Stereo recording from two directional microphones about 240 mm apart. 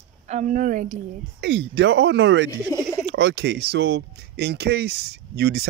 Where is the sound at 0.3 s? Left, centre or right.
Right.